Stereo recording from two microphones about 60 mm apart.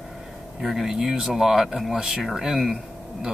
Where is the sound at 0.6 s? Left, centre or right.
Centre.